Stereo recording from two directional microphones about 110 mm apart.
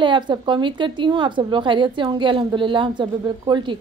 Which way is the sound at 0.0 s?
45° right (ahead or behind).